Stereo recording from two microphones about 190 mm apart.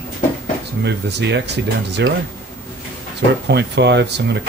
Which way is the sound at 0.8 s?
65° right (ahead or behind).